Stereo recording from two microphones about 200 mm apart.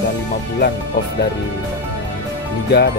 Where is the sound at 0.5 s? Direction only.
55° left (ahead or behind).